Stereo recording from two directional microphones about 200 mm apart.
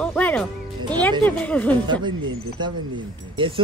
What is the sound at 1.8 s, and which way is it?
Speech, 25° right (ahead or behind).